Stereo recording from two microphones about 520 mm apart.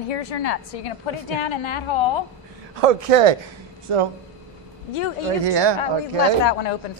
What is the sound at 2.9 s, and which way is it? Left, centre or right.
Speech, right.